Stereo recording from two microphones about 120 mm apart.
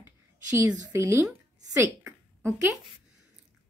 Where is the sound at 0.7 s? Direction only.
20° right (ahead or behind).